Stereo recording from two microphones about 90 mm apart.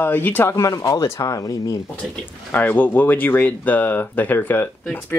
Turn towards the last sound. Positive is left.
turn(degrees=20)  # may be behind; listen again after turning